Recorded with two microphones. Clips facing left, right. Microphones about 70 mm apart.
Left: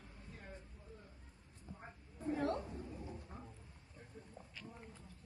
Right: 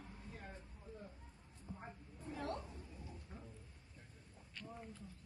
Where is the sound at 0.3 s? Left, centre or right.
Centre.